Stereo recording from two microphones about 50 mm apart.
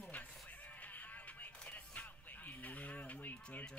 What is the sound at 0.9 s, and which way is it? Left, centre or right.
Music, left.